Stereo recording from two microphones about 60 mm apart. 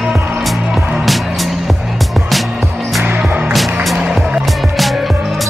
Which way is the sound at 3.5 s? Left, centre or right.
Centre.